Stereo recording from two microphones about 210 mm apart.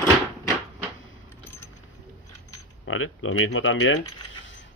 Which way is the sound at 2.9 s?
80° left.